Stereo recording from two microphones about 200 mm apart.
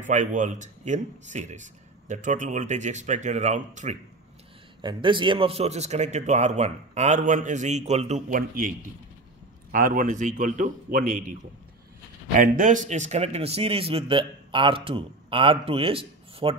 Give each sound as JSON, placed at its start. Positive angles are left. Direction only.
{"t": 0.0, "sound": "speech", "side_deg": -40}
{"t": 4.8, "sound": "a man's voice", "side_deg": -25}
{"t": 12.4, "sound": "a man's voice", "side_deg": -40}